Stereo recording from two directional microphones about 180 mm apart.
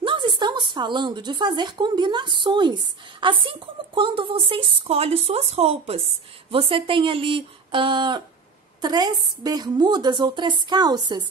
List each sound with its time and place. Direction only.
0.0 s a woman's voice: 25° right (ahead or behind)